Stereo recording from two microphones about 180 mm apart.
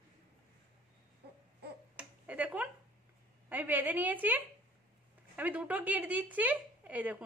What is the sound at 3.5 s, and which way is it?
A woman's voice, 10° right (ahead or behind).